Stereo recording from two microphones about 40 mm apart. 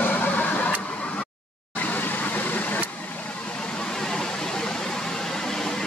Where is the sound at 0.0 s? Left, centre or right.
Left.